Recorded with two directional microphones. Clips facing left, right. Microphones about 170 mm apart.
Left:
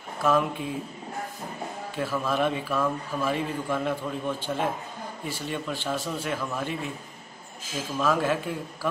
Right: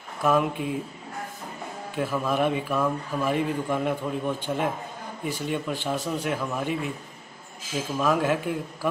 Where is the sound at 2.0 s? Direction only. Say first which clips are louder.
Right 1 dB; 15° right (ahead or behind).